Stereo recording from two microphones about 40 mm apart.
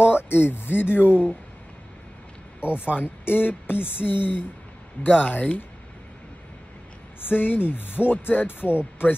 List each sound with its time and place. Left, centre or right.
0.0 s speech: left
2.6 s speech: left
5.0 s speech: left
7.2 s speech: left